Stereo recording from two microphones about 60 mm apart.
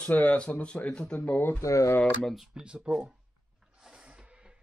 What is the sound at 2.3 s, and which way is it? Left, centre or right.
Speech, centre.